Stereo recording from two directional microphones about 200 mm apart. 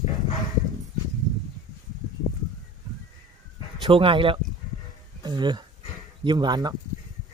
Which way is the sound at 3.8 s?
25° right (ahead or behind).